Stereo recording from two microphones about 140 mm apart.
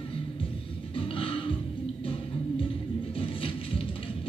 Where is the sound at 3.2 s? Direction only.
40° left (ahead or behind).